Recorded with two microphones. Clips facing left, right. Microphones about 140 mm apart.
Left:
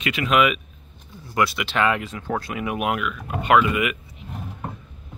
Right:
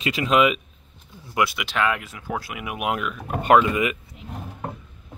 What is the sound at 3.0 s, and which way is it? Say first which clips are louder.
Speech: even; 40° right (ahead or behind).